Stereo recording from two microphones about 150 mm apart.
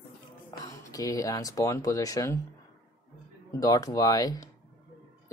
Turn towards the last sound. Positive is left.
turn(degrees=25)  # may be behind; listen again after turning